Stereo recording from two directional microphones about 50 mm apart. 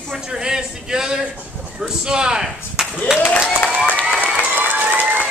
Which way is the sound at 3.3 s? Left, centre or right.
Left.